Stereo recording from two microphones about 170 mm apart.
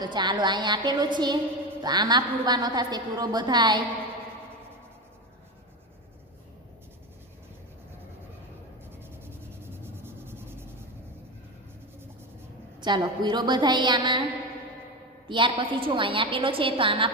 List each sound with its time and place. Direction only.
0.0 s a woman's voice: 25° right (ahead or behind)
8.9 s a sound: 15° right (ahead or behind)
12.8 s a woman's voice: 25° right (ahead or behind)
15.2 s a woman's voice: 30° right (ahead or behind)